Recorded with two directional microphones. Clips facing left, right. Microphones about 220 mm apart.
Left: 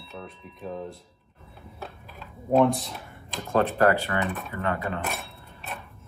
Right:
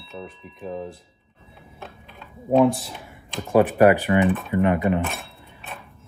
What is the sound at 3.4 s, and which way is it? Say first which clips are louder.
Speech: right 6 dB; 15° right (ahead or behind).